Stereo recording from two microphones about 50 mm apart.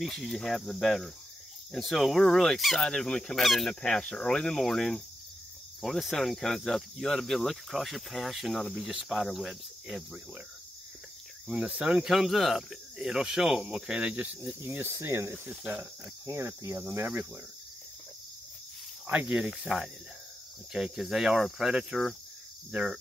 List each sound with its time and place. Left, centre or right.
0.0 s cricket: centre
3.4 s cricket: centre
3.8 s speech: centre
5.8 s cricket: centre
11.4 s speech: right
12.1 s speech: centre
13.7 s speech: right
14.4 s cricket: right
19.0 s speech: right
19.3 s speech: centre